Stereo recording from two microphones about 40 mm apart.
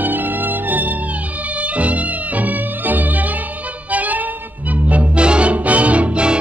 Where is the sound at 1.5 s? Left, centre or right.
Right.